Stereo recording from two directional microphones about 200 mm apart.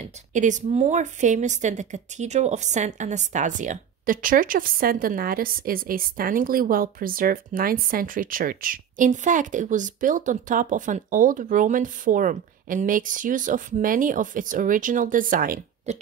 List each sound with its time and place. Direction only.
0.0 s speech: 40° right (ahead or behind)